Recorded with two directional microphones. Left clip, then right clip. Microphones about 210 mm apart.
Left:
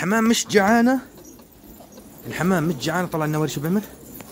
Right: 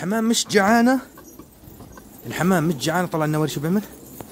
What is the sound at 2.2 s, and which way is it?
Speech, 15° right (ahead or behind).